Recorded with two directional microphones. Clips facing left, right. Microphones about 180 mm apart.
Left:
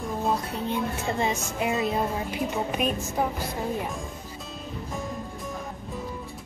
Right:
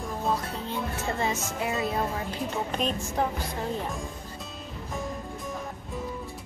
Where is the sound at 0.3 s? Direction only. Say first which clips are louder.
Left 2 dB; 15° left (ahead or behind).